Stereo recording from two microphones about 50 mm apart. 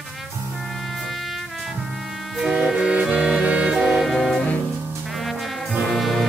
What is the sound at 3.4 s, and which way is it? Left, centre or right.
Music, right.